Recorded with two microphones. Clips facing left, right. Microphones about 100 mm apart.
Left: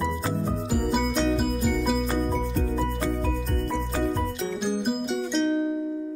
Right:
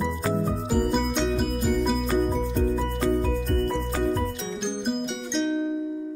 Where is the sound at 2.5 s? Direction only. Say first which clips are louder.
Right 2 dB; 30° right (ahead or behind).